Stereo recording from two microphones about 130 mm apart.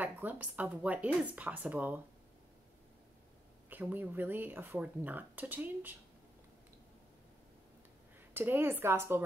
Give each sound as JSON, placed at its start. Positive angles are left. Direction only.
{"t": 0.0, "sound": "speech", "side_deg": -15}
{"t": 3.7, "sound": "speech", "side_deg": -15}
{"t": 8.3, "sound": "speech", "side_deg": -15}